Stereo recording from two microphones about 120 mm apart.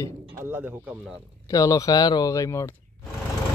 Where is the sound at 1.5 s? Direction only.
30° left (ahead or behind).